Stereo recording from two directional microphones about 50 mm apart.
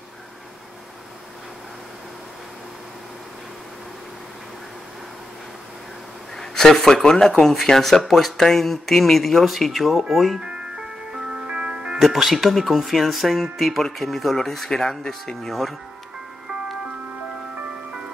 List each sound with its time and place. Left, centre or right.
6.3 s speech: centre
10.4 s speech: centre